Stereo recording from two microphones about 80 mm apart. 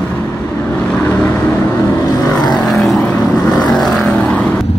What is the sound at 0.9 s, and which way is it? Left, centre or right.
Vehicle, left.